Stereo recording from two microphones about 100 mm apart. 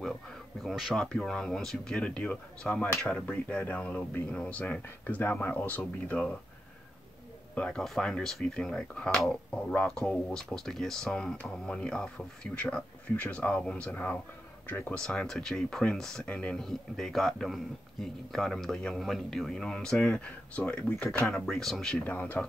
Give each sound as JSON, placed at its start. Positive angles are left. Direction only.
{"t": 0.7, "sound": "a man's voice", "side_deg": 0}
{"t": 7.5, "sound": "speech", "side_deg": 10}
{"t": 15.0, "sound": "a man's voice", "side_deg": 5}
{"t": 21.3, "sound": "a man's voice", "side_deg": 5}
{"t": 22.0, "sound": "speech", "side_deg": 15}